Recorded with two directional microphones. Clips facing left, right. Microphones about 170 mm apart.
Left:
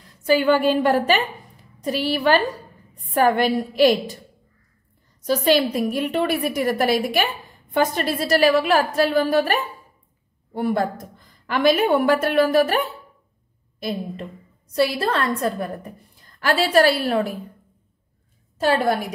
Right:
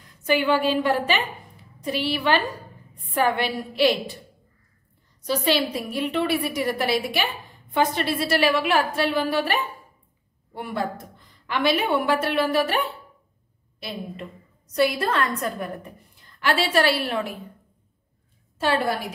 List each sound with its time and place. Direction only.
0.6 s a woman's voice: 50° left (ahead or behind)
5.2 s a woman's voice: 45° left (ahead or behind)
14.8 s a woman's voice: 30° left (ahead or behind)
18.6 s a woman's voice: 45° left (ahead or behind)